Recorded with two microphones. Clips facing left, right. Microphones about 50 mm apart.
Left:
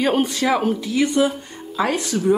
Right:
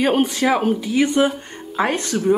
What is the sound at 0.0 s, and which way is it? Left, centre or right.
A woman's voice, centre.